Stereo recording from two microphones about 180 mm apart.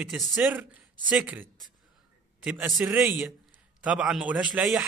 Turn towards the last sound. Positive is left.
turn(degrees=-5)  # may be behind; listen again after turning